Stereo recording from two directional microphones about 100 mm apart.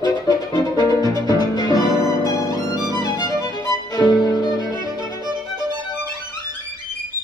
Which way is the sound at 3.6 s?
40° left (ahead or behind).